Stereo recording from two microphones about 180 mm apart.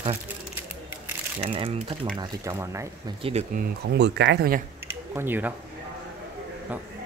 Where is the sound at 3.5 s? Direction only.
55° right (ahead or behind).